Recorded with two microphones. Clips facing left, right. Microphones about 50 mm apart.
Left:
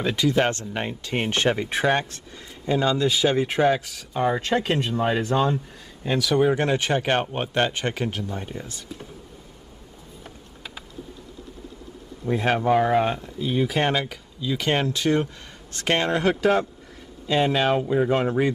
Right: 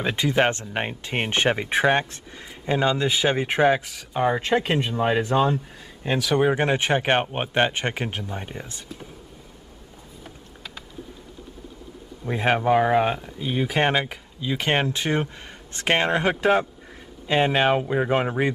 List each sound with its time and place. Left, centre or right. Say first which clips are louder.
0.0 s speech: even; right
6.3 s speech: even; right
10.2 s a sound: even; centre
12.3 s speech: even; centre